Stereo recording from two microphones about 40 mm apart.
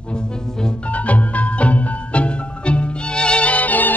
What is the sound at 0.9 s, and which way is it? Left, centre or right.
Music, left.